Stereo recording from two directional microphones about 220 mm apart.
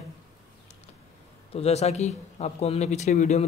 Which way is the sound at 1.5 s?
30° left (ahead or behind).